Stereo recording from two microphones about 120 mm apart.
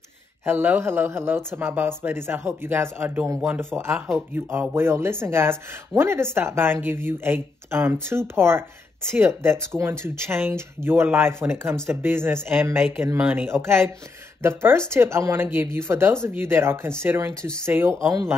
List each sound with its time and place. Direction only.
0.5 s speech: 15° right (ahead or behind)